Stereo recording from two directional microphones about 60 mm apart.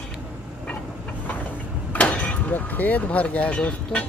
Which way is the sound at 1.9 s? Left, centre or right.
Left.